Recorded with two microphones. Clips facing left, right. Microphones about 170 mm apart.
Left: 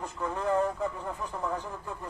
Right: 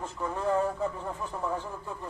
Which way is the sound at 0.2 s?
10° right (ahead or behind).